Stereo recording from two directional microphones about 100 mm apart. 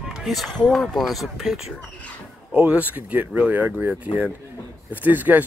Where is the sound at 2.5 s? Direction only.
15° right (ahead or behind).